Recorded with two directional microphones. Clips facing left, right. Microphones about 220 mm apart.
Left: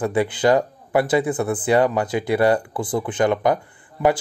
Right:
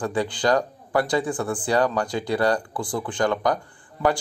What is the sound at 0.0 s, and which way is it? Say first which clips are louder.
Speech: left 4 dB; 20° left (ahead or behind).